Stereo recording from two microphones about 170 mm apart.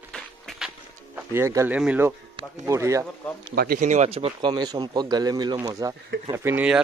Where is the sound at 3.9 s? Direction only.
40° right (ahead or behind); by 6.8 s 10° right (ahead or behind).